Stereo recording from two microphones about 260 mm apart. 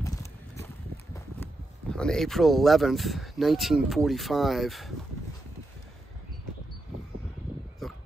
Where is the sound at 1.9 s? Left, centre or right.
Centre.